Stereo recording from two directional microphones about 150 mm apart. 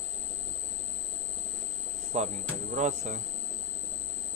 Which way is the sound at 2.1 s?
45° right (ahead or behind).